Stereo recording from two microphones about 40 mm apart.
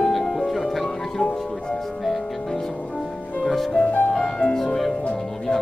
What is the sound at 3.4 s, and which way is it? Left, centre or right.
Music, centre.